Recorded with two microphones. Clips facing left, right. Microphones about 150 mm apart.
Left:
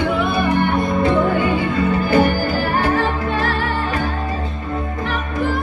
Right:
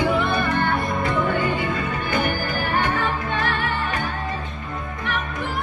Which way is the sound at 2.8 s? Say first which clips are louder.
Left 5 dB; 35° left (ahead or behind).